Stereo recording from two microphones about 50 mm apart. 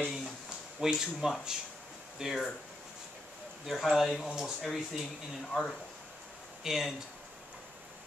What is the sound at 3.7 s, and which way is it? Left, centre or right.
Speech, centre.